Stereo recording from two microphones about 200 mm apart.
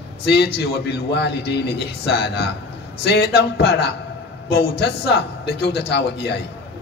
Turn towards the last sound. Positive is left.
turn(degrees=55)  # may be behind; listen again after turning